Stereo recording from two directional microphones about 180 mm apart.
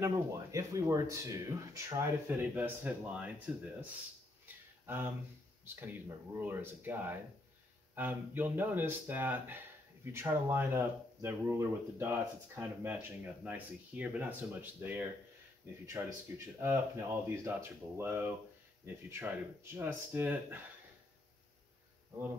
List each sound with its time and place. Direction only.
0.0 s speech: 15° right (ahead or behind)
4.8 s speech: 10° right (ahead or behind)